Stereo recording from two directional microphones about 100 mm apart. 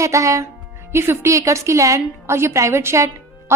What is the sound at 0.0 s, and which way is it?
A woman's voice, 30° right (ahead or behind).